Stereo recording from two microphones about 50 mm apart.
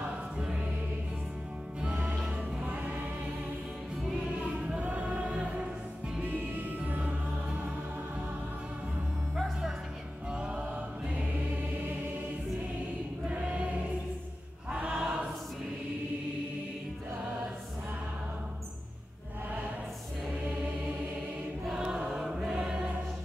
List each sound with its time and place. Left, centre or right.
0.0 s music: centre
2.6 s music: right
4.7 s music: right
6.2 s music: right
7.0 s music: right
10.3 s music: right
13.3 s choir: right
14.7 s choir: right
21.6 s choir: centre